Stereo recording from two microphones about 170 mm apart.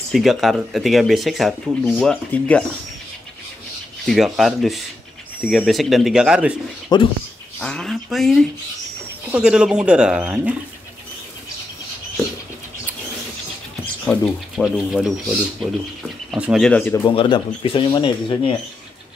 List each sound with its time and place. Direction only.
0.1 s speech: centre (ahead or behind)
4.0 s speech: centre (ahead or behind)
6.9 s speech: 25° left (ahead or behind)
7.6 s speech: 5° left (ahead or behind)
14.0 s speech: 5° left (ahead or behind)
16.3 s speech: 5° right (ahead or behind)
16.6 s speech: 10° left (ahead or behind)
17.0 s speech: 30° left (ahead or behind)